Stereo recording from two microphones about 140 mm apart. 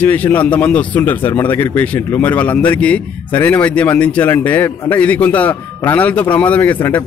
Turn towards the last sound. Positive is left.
turn(degrees=10)  # may be behind; listen again after turning